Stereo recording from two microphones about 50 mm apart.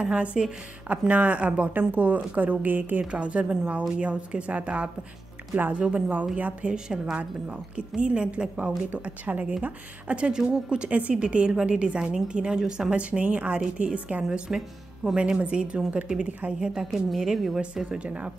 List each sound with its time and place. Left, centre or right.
0.0 s a woman's voice: right
3.0 s a woman's voice: right
6.7 s a woman's voice: centre
7.2 s a woman's voice: right
14.5 s a woman's voice: centre
15.3 s a woman's voice: right
16.5 s a woman's voice: centre
17.8 s a woman's voice: right